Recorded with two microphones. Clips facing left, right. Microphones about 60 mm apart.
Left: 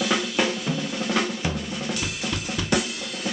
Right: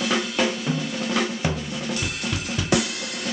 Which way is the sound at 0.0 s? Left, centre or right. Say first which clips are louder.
Even; centre.